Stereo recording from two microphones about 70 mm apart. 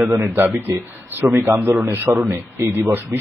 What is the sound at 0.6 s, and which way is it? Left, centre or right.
A man's voice, right.